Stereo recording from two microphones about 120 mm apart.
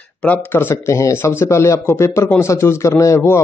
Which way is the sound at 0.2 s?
15° left (ahead or behind).